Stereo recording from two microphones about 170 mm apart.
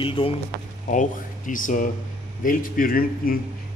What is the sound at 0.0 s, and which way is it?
Speech, 30° left (ahead or behind).